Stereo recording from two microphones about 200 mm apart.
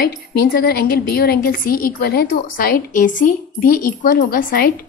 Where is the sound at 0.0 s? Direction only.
45° left (ahead or behind).